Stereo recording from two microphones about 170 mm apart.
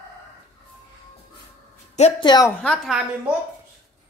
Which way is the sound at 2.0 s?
25° left (ahead or behind).